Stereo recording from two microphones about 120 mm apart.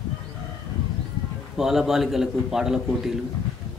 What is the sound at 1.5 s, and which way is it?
Speech, centre (ahead or behind).